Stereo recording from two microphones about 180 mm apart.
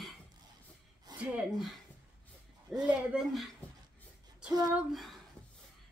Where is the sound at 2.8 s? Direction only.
5° right (ahead or behind).